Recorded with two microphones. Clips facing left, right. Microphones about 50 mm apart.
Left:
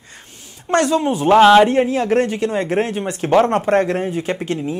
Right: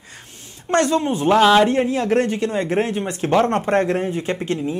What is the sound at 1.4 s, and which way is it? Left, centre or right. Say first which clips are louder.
Speech: left 5 dB; centre.